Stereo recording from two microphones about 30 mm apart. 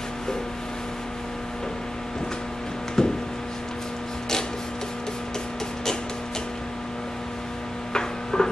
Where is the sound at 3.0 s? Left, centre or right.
Centre.